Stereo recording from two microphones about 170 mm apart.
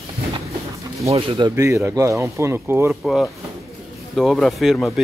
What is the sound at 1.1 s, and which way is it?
Speech, 35° right (ahead or behind).